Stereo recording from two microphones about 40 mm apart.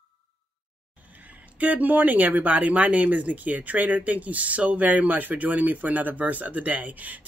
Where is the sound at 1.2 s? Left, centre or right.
Right.